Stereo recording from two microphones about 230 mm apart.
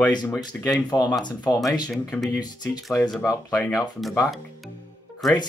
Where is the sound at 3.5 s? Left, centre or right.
Centre.